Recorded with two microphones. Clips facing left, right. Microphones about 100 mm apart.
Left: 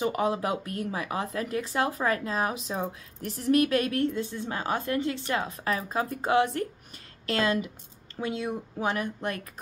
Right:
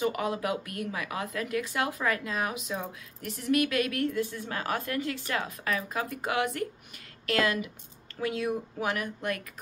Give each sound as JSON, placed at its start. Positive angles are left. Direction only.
{"t": 0.0, "sound": "speech", "side_deg": 30}